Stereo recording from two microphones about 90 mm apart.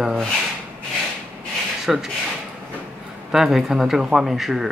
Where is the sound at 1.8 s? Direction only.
5° right (ahead or behind).